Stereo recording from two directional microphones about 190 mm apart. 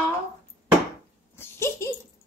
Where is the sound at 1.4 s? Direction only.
15° left (ahead or behind).